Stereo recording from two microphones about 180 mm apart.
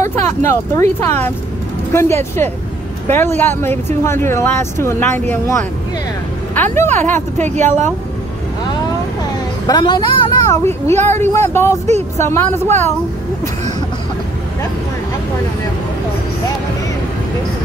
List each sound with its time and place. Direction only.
0.0 s speech: 15° left (ahead or behind)
6.5 s speech: 10° left (ahead or behind)
7.5 s speech: 40° right (ahead or behind)
9.2 s a sound: 20° left (ahead or behind)
11.1 s speech: 15° left (ahead or behind)
11.8 s speech: 40° right (ahead or behind)
12.3 s speech: 15° left (ahead or behind)